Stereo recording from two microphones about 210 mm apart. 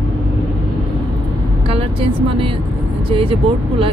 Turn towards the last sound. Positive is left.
turn(degrees=-25)  # may be behind; listen again after turning